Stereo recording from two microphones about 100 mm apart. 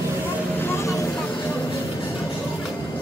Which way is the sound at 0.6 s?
25° left (ahead or behind).